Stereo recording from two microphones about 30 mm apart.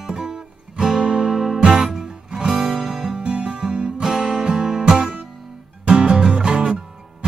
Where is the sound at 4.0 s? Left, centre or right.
Centre.